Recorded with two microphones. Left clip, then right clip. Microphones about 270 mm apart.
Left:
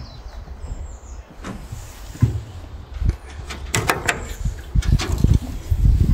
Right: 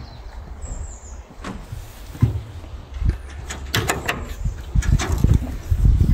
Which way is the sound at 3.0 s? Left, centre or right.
Centre.